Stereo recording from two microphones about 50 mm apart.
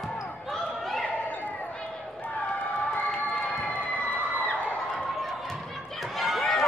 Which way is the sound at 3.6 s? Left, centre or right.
Left.